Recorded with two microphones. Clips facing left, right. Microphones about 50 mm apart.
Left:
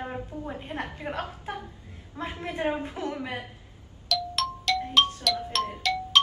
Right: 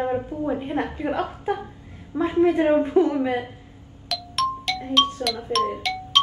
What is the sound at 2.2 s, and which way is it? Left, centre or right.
Speech, centre.